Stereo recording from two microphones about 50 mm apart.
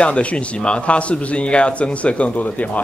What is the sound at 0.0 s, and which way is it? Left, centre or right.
A man's voice, left.